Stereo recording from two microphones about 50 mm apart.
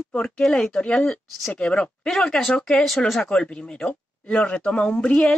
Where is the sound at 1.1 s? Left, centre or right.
Centre.